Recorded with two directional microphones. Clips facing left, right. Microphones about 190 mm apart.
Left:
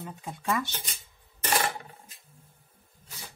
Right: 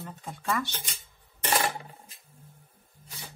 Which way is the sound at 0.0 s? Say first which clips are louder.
Left 1 dB; 10° left (ahead or behind).